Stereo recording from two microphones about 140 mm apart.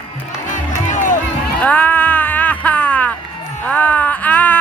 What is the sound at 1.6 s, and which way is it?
Music, 10° left (ahead or behind).